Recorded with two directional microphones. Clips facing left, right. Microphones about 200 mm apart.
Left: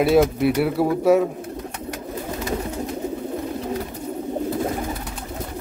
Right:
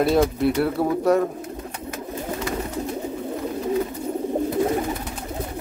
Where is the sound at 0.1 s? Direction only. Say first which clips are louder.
Left 2 dB; 5° left (ahead or behind).